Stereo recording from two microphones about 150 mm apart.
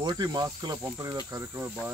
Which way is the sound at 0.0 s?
25° right (ahead or behind).